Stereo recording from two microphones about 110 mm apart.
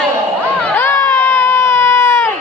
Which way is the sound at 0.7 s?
20° left (ahead or behind).